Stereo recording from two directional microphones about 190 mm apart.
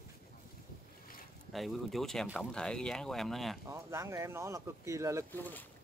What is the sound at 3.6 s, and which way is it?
Speech, 15° right (ahead or behind).